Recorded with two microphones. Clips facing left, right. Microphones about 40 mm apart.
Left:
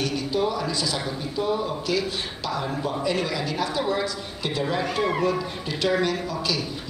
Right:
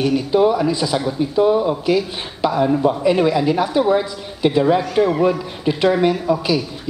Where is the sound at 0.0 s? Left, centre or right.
Right.